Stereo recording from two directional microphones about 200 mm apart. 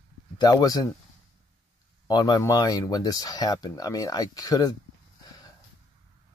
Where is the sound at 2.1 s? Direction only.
20° left (ahead or behind).